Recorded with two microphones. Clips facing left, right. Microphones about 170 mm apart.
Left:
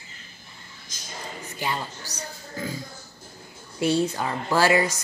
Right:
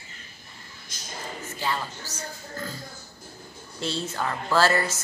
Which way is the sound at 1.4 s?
15° left (ahead or behind).